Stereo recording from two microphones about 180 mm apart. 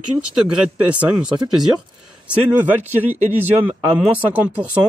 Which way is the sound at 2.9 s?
10° right (ahead or behind).